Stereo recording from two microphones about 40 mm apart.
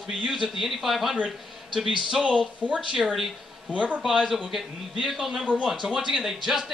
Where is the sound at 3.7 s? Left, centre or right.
Right.